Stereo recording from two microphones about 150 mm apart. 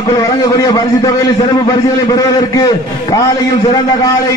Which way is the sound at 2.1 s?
25° left (ahead or behind).